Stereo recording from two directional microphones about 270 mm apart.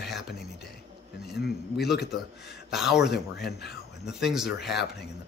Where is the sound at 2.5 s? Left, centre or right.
Centre.